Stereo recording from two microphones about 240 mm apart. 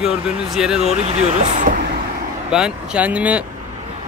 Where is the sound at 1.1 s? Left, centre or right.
Right.